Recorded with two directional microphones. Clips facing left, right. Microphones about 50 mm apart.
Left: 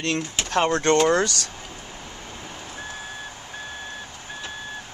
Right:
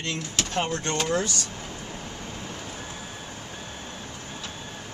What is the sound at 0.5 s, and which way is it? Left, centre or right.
Speech, left.